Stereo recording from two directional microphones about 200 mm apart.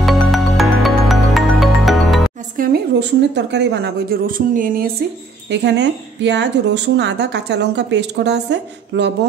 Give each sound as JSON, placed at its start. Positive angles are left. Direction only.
{"t": 0.0, "sound": "music", "side_deg": 0}
{"t": 2.5, "sound": "speech", "side_deg": -50}
{"t": 5.5, "sound": "speech", "side_deg": -60}